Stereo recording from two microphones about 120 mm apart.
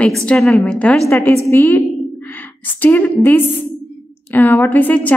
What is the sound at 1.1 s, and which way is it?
A woman's voice, 20° left (ahead or behind).